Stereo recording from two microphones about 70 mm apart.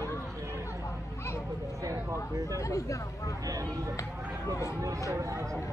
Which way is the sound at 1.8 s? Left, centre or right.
Right.